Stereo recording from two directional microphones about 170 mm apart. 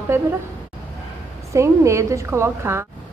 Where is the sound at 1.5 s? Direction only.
15° right (ahead or behind).